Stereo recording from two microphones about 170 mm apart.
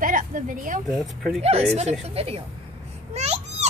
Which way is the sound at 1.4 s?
40° right (ahead or behind).